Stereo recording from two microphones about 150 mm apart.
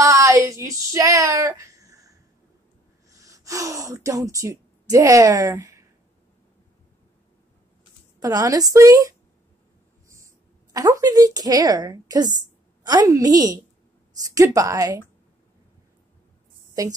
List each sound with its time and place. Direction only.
0.0 s a sound: 20° right (ahead or behind)
0.9 s speech: 20° right (ahead or behind)
8.2 s a woman's voice: 25° right (ahead or behind)
16.8 s a woman's voice: 25° right (ahead or behind)